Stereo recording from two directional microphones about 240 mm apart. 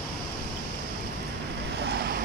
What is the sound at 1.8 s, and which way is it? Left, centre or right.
Vehicle, right.